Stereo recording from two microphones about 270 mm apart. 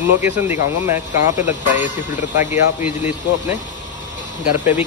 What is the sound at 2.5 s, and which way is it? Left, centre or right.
Speech, centre.